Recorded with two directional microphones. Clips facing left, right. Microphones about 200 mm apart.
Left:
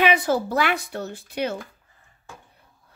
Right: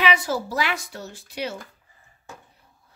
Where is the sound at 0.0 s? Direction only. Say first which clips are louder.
Left 3 dB; 55° left (ahead or behind).